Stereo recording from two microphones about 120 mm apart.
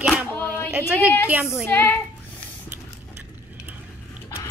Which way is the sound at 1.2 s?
10° right (ahead or behind).